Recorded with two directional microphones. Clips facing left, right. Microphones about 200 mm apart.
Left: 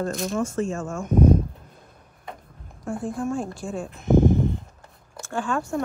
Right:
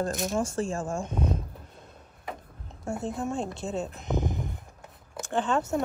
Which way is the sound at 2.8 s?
25° right (ahead or behind).